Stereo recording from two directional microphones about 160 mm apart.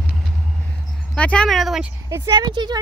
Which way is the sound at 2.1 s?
20° right (ahead or behind).